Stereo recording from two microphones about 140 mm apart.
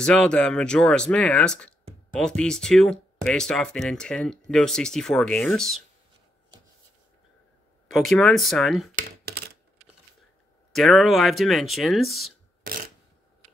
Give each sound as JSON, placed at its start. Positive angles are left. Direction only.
{"t": 0.0, "sound": "speech", "side_deg": 5}
{"t": 7.9, "sound": "speech", "side_deg": 0}
{"t": 10.7, "sound": "speech", "side_deg": 0}
{"t": 12.6, "sound": "a sound", "side_deg": -90}